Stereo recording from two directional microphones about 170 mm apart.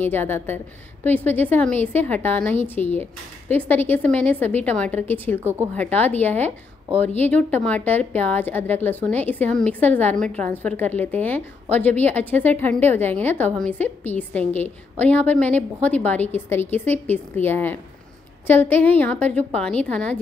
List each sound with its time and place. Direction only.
0.0 s a woman's voice: 10° left (ahead or behind)
5.4 s speech: 15° right (ahead or behind)
5.8 s a woman's voice: 10° left (ahead or behind)